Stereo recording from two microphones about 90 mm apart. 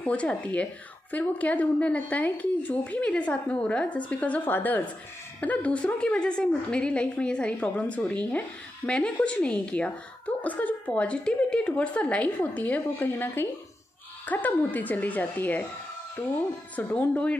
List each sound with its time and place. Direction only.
0.0 s a woman's voice: 15° left (ahead or behind)